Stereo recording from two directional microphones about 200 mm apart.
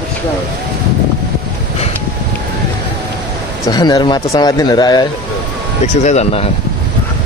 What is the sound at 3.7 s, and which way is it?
Speech, 20° left (ahead or behind).